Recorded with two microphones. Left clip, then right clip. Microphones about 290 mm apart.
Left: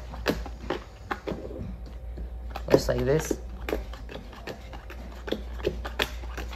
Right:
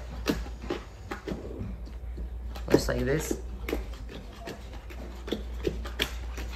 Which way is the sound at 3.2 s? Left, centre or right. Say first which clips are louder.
Left 2 dB; left.